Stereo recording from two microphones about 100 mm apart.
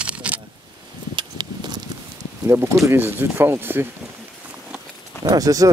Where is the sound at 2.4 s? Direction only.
30° right (ahead or behind).